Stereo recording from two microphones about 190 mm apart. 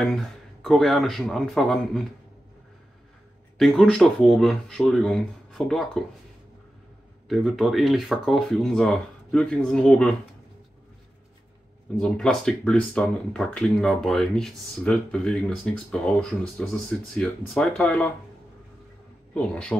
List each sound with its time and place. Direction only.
0.0 s speech: 5° left (ahead or behind)
3.5 s speech: centre (ahead or behind)
7.2 s speech: centre (ahead or behind)
12.0 s speech: 5° left (ahead or behind)
19.3 s speech: 5° left (ahead or behind)